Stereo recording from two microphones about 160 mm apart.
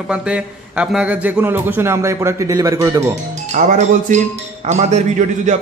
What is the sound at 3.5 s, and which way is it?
A man's voice, 50° right (ahead or behind).